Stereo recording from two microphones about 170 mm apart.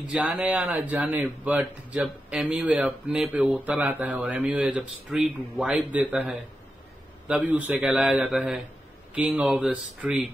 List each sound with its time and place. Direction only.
0.0 s speech: 10° right (ahead or behind)